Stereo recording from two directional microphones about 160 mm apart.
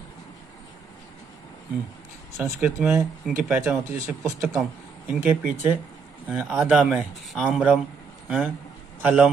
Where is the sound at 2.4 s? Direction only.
10° right (ahead or behind).